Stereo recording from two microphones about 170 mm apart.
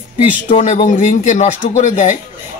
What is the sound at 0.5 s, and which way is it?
Speech, 45° left (ahead or behind).